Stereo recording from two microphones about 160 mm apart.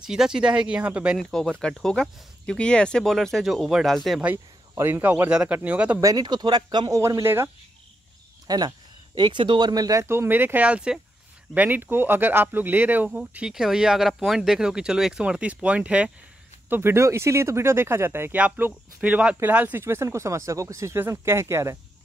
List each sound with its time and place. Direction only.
0.0 s speech: 5° right (ahead or behind)
1.6 s speech: 5° left (ahead or behind)
5.9 s speech: 25° right (ahead or behind)
8.5 s speech: 25° right (ahead or behind)